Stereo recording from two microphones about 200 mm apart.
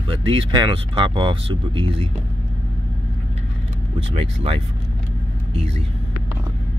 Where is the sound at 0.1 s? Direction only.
25° right (ahead or behind).